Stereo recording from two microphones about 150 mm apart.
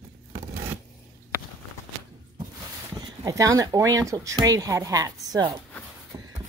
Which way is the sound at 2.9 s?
25° right (ahead or behind).